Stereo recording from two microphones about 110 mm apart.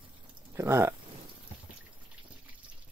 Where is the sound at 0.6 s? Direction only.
25° right (ahead or behind).